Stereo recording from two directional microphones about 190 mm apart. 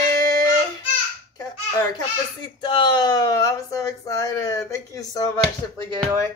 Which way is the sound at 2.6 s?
25° left (ahead or behind).